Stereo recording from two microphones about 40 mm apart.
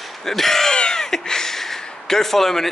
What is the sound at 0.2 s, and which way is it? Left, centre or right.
Speech, centre.